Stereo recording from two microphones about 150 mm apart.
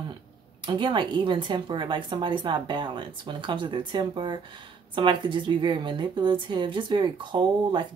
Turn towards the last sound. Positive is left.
turn(degrees=-30)  # may be behind; listen again after turning